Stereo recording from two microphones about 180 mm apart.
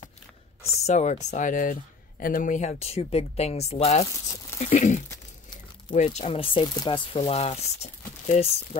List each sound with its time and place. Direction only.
0.8 s speech: 40° left (ahead or behind)
4.6 s a sound: 45° left (ahead or behind)
5.1 s crumpling: 25° left (ahead or behind)
5.9 s speech: 35° left (ahead or behind)